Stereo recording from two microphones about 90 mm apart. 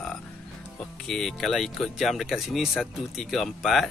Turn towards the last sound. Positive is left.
turn(degrees=0)  # may be behind; listen again after turning